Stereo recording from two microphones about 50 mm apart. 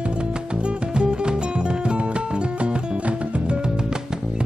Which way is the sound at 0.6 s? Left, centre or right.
Centre.